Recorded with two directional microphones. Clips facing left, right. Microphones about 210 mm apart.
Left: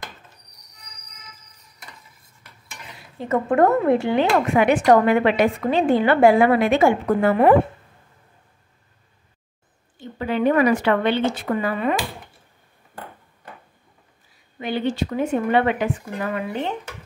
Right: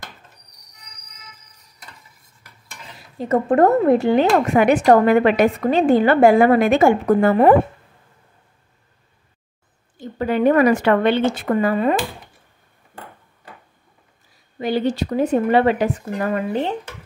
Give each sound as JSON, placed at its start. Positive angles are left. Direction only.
{"t": 3.3, "sound": "speech", "side_deg": -35}
{"t": 9.9, "sound": "speech", "side_deg": -45}
{"t": 14.6, "sound": "speech", "side_deg": -40}